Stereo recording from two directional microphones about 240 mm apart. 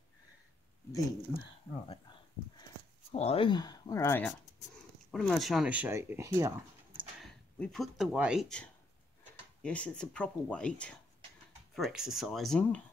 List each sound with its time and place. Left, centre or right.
3.1 s speech: left; by 7.1 s centre
7.6 s speech: centre